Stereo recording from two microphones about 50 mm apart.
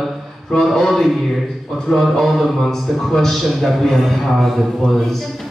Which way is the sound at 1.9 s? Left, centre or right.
Centre.